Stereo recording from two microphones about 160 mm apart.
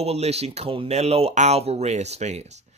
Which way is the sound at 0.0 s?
40° right (ahead or behind).